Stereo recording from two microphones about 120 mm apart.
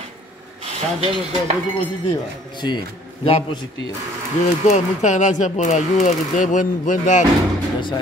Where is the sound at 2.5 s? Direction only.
40° left (ahead or behind).